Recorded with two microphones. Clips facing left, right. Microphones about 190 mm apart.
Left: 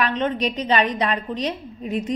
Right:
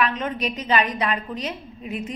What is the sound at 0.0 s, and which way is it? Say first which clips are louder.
A woman's voice: left 2 dB; 30° left (ahead or behind).